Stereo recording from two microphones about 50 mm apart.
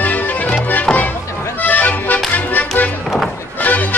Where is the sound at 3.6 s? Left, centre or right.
Left.